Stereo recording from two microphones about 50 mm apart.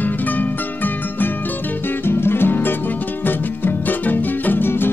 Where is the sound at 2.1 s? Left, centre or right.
Left.